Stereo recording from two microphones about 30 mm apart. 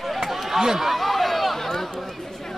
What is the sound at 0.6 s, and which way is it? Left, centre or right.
Speech, centre.